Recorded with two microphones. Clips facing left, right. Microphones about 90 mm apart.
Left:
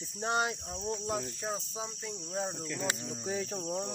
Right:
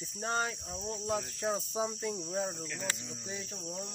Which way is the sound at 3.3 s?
35° left (ahead or behind).